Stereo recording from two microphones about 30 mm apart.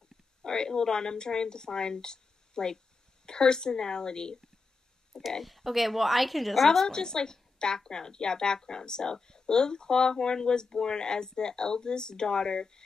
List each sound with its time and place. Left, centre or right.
0.4 s a woman's voice: left
5.4 s a woman's voice: centre
6.9 s a woman's voice: left